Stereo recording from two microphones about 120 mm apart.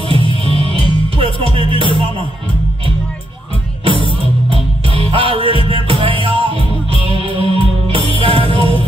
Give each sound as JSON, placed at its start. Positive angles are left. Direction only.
{"t": 0.1, "sound": "music", "side_deg": -50}
{"t": 3.8, "sound": "music", "side_deg": -45}